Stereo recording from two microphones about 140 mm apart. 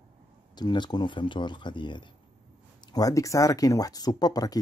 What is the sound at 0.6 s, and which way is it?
Speech, 30° left (ahead or behind).